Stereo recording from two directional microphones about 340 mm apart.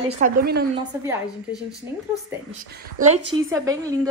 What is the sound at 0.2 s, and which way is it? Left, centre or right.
Speech, right.